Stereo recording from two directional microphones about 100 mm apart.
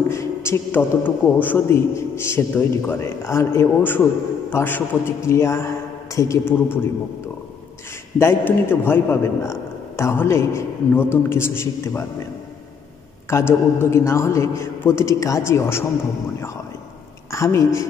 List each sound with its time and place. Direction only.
0.1 s a sound: 30° left (ahead or behind)
1.4 s a man's voice: 20° left (ahead or behind)
8.2 s a man's voice: 25° left (ahead or behind)
13.3 s a man's voice: 25° left (ahead or behind)
17.3 s a woman's voice: 30° left (ahead or behind)